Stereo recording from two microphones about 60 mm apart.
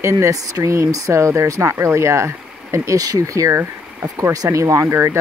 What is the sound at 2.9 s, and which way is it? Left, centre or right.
Speech, right.